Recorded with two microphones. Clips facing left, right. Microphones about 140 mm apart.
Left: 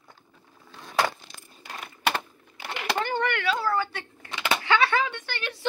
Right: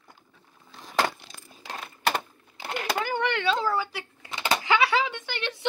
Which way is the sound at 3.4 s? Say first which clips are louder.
Right 2 dB; 20° right (ahead or behind).